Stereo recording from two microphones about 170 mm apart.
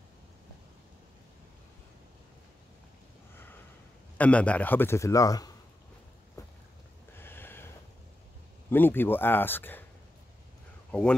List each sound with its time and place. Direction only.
4.2 s a man's voice: 10° left (ahead or behind)
6.4 s a sound: 20° left (ahead or behind)
8.6 s a man's voice: 10° left (ahead or behind)
10.9 s speech: 5° left (ahead or behind)